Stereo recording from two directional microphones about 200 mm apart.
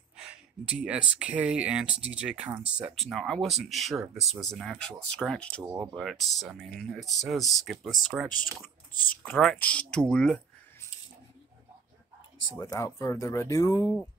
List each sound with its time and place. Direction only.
0.2 s speech: 5° right (ahead or behind)
8.9 s speech: 45° left (ahead or behind)
9.2 s speech: 5° left (ahead or behind)
12.5 s speech: 20° left (ahead or behind)